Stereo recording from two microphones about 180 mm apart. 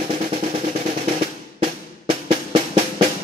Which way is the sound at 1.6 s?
35° right (ahead or behind).